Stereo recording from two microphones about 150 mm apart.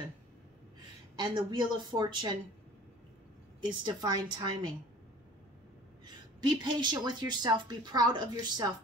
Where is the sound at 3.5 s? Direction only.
30° right (ahead or behind).